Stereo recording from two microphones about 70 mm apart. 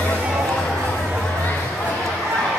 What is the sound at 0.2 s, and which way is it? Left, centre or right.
Chatter, centre.